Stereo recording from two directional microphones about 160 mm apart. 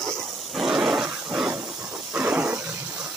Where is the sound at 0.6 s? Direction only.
Centre (ahead or behind).